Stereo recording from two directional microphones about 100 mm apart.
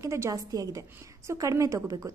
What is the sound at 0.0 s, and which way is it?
A woman's voice, 30° right (ahead or behind).